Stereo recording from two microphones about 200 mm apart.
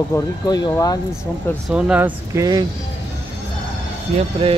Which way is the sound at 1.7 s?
5° right (ahead or behind).